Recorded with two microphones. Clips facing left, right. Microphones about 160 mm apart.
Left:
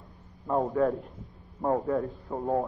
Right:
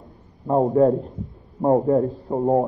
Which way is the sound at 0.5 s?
35° right (ahead or behind).